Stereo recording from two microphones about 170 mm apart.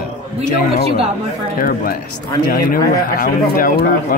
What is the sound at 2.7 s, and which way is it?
Speech, 60° left (ahead or behind).